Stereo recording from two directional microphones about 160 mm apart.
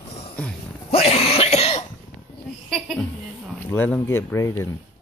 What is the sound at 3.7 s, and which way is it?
Speech, 10° left (ahead or behind).